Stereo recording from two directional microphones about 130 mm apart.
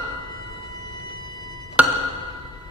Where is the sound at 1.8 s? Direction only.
10° right (ahead or behind).